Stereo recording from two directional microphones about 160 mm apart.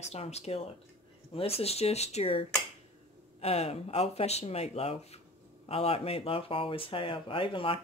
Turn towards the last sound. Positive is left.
turn(degrees=35)  # may be behind; listen again after turning